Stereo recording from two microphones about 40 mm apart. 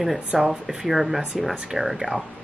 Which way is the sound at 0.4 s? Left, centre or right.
Centre.